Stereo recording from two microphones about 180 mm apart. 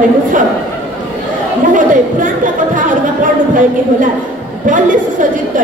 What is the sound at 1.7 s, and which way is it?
Speech, 45° right (ahead or behind).